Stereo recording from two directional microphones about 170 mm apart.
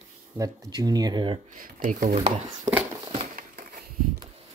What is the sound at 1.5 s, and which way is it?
Speech, 50° right (ahead or behind).